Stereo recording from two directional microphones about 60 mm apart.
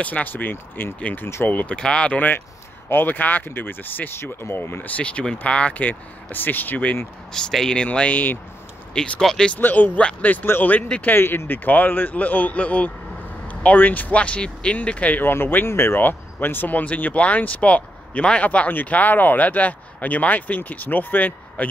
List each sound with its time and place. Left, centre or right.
0.0 s speech: left
1.8 s speech: centre; by 4.8 s left
4.8 s speech: left
7.3 s speech: centre
9.2 s speech: centre
9.6 s speech: left
10.4 s speech: left
10.7 s speech: left
11.1 s speech: left
15.2 s speech: left
16.0 s speech: left